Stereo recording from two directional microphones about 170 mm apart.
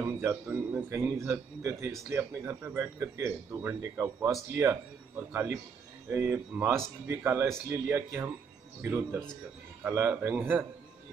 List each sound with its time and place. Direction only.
0.0 s speech: 15° right (ahead or behind)